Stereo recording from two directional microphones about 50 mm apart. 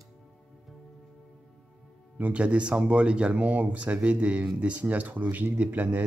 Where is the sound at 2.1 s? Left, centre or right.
Right.